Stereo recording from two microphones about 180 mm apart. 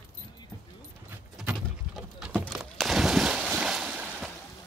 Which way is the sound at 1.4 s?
5° right (ahead or behind).